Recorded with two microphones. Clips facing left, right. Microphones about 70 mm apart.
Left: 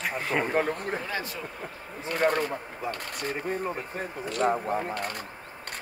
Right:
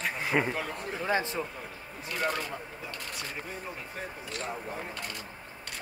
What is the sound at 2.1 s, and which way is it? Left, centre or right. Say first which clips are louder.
Speech: left 7 dB; left.